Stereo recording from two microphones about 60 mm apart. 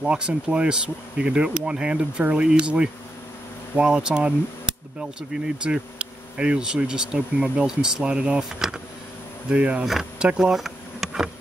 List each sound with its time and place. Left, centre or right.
0.0 s speech: centre
8.5 s speech: centre
9.5 s speech: right
10.1 s a sound: centre